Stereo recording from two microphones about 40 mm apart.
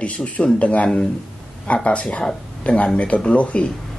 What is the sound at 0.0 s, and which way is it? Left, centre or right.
Speech, left.